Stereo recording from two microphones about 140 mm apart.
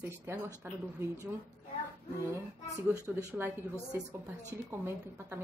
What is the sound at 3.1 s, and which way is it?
A woman's voice, 15° right (ahead or behind).